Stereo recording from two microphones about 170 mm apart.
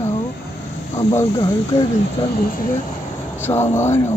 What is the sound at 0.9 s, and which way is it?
Speech, 15° left (ahead or behind).